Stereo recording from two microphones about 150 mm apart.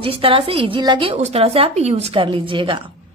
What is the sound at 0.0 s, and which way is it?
A woman's voice, 40° right (ahead or behind).